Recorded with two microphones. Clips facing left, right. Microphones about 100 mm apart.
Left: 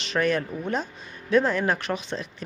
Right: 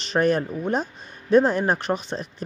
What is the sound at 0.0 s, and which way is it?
Speech, 40° right (ahead or behind).